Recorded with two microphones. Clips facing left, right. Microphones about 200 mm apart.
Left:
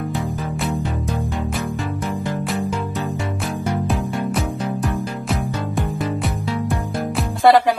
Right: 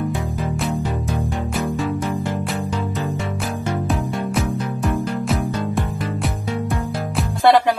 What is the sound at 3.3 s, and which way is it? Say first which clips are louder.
Music: left 1 dB; centre (ahead or behind).